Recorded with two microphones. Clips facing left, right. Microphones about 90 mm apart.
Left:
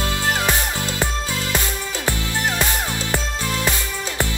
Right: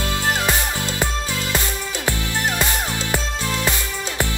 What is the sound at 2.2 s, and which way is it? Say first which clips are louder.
Music: even; 20° left (ahead or behind).